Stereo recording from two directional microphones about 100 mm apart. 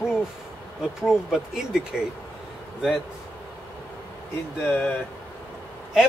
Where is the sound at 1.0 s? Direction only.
5° right (ahead or behind).